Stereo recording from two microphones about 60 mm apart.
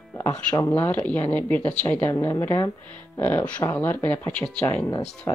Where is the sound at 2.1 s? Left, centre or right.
Left.